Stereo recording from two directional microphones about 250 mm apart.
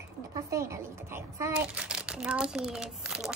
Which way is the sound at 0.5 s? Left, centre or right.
Centre.